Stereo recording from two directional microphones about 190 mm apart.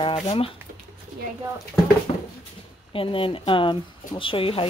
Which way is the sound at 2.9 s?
30° left (ahead or behind).